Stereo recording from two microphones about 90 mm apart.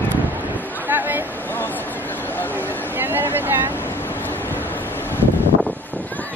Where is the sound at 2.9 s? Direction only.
25° right (ahead or behind).